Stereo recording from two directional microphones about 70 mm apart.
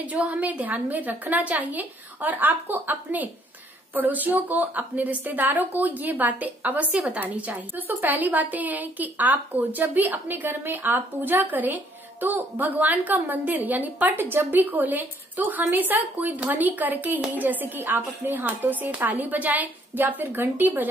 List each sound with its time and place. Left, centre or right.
0.0 s a woman's voice: centre